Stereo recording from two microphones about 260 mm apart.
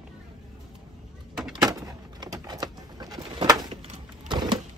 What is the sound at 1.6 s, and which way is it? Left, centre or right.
Bird, centre.